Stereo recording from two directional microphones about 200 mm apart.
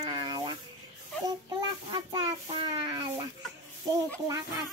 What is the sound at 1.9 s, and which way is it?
Child singing, 25° right (ahead or behind).